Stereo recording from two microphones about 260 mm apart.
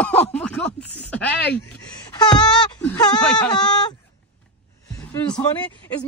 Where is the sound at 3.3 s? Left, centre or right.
Centre.